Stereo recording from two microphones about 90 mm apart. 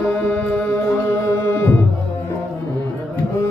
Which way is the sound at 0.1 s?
15° left (ahead or behind).